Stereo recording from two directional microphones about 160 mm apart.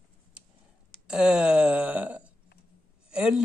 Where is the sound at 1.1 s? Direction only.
5° right (ahead or behind).